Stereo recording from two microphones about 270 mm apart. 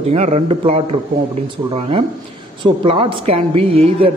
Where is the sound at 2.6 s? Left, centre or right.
Centre.